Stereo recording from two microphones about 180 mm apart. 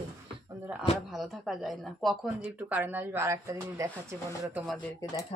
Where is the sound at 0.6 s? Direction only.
10° right (ahead or behind).